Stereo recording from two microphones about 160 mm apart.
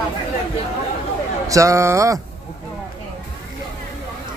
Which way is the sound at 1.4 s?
20° right (ahead or behind).